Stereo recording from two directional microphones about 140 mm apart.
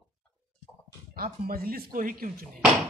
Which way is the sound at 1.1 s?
90° right.